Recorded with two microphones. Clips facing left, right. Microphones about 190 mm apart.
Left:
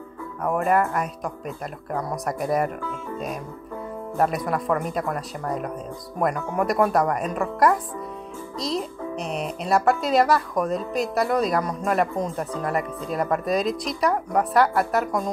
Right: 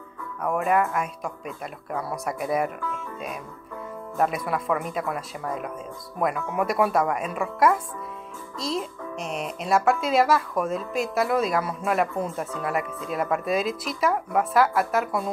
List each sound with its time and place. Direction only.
0.4 s a child's voice: centre (ahead or behind)
2.8 s speech: 30° left (ahead or behind)
4.2 s a child's voice: centre (ahead or behind)
6.5 s a child's voice: 5° right (ahead or behind)